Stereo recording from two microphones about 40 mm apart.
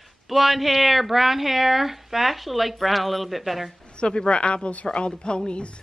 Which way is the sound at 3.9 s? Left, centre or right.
Left.